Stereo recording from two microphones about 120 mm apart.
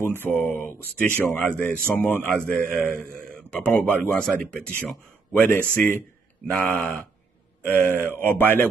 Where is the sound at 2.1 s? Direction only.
15° left (ahead or behind).